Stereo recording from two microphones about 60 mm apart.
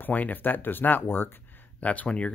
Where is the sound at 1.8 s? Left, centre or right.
Left.